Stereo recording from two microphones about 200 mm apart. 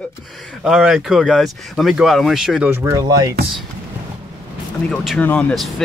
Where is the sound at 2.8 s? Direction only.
15° right (ahead or behind).